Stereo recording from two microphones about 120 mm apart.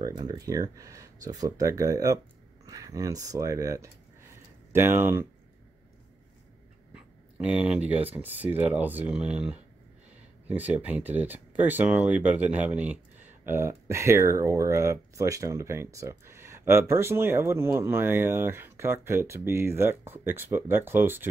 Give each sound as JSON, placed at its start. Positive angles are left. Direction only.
{"t": 0.0, "sound": "speech", "side_deg": -35}
{"t": 6.9, "sound": "a sound", "side_deg": -10}
{"t": 8.1, "sound": "speech", "side_deg": -15}